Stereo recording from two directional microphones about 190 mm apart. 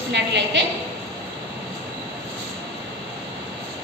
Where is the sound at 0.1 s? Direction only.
65° right (ahead or behind).